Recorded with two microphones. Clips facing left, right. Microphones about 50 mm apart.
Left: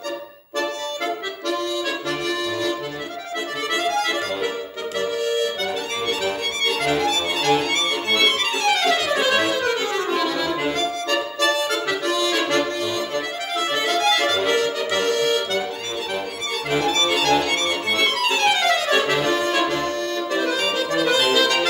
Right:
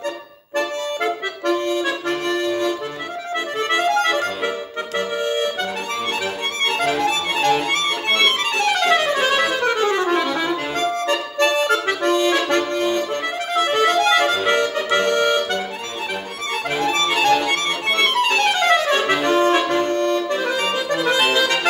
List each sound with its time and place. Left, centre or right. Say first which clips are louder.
1.0 s accordion: right 4 dB; right
4.0 s music: right 3 dB; right
4.9 s accordion: right 1 dB; right
6.6 s accordion: right 2 dB; right
8.5 s music: right 3 dB; right
16.9 s music: right 4 dB; right
19.2 s accordion: right 4 dB; right